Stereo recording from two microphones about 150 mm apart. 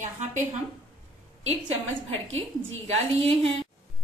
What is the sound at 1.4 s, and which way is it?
A woman's voice, 45° right (ahead or behind).